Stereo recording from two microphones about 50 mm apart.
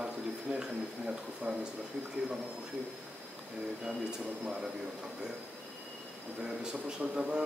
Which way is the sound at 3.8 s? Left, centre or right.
Centre.